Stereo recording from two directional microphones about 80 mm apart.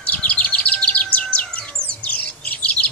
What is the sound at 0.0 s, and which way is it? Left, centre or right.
Chirp, centre.